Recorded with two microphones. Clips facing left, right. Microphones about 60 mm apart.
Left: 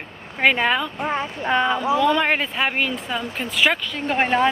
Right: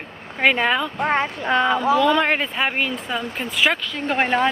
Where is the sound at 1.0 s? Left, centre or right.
Right.